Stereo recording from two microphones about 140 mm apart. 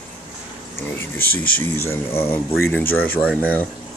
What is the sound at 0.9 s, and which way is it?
Speech, 15° left (ahead or behind).